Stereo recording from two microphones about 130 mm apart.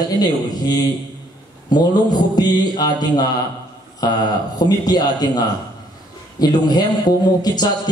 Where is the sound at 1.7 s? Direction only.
30° left (ahead or behind).